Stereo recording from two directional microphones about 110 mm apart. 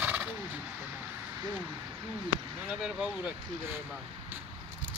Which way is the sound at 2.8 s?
10° right (ahead or behind).